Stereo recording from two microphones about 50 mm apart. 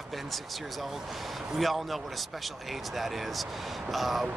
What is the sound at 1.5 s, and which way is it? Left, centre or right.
Speech, centre.